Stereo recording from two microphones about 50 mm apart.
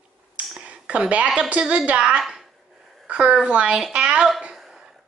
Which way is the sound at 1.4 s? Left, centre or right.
Right.